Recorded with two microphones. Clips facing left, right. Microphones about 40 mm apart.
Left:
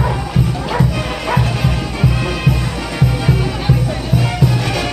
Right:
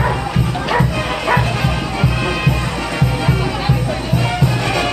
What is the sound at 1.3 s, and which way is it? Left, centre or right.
Music, centre.